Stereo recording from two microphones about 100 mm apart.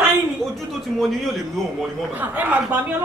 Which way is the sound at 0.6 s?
Centre (ahead or behind).